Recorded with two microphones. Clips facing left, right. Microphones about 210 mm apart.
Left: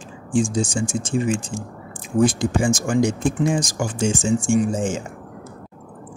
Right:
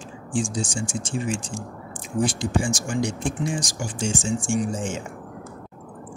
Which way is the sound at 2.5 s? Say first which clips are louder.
Left 5 dB; 90° left.